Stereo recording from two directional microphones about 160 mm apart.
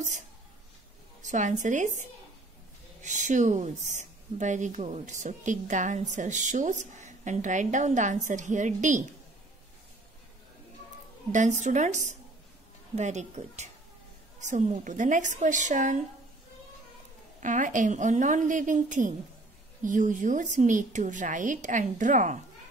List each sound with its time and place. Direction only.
1.2 s a woman's voice: 50° right (ahead or behind)
11.3 s a woman's voice: 50° right (ahead or behind)
17.4 s a woman's voice: 55° right (ahead or behind)